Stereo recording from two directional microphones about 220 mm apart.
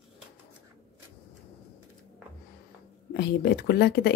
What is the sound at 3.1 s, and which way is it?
Speech, 50° left (ahead or behind).